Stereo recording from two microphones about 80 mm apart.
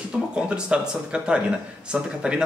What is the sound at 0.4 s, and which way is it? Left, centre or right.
Speech, centre.